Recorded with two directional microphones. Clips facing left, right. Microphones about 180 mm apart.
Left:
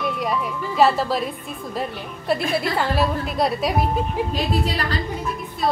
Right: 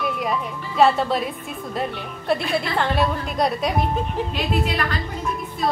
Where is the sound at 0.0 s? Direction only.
Centre (ahead or behind).